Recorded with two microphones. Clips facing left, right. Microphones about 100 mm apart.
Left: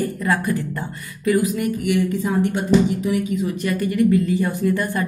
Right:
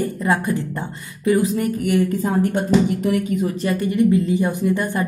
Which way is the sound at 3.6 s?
30° right (ahead or behind).